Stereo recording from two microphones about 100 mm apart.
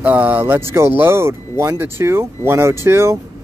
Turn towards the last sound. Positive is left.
turn(degrees=-25)  # may be behind; listen again after turning